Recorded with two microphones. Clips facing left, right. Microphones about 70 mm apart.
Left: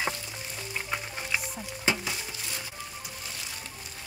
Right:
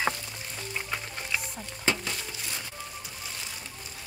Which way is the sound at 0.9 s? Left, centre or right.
Centre.